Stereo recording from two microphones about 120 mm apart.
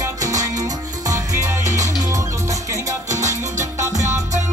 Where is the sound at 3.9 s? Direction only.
85° right.